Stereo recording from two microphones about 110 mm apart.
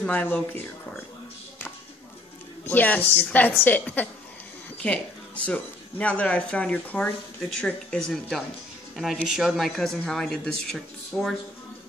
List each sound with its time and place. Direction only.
0.0 s speech: 15° left (ahead or behind)
2.6 s a woman's voice: 15° left (ahead or behind)